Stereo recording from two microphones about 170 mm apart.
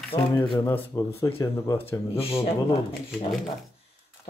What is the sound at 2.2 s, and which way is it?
Speech, 35° left (ahead or behind).